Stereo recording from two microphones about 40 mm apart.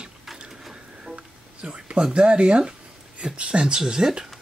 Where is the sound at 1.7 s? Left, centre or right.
Right.